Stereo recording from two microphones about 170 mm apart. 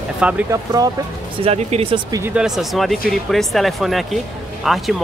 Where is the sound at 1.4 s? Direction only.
35° right (ahead or behind).